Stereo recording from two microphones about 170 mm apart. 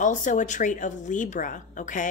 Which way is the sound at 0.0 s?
50° left (ahead or behind).